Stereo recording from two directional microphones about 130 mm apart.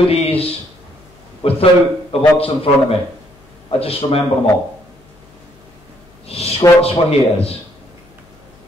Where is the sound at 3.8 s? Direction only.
50° left (ahead or behind).